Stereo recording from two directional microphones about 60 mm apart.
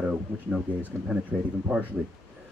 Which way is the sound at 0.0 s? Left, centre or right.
Centre.